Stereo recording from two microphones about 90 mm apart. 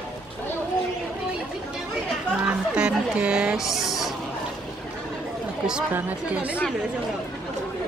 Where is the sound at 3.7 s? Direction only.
5° right (ahead or behind).